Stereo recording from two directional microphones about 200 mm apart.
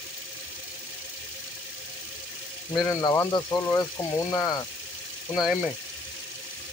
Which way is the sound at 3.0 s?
15° left (ahead or behind).